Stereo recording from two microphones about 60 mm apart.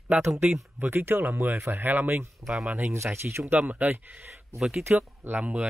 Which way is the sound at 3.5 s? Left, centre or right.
Right.